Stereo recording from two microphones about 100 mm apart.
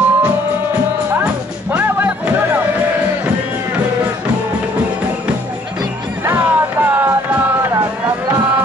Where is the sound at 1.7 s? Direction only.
15° right (ahead or behind).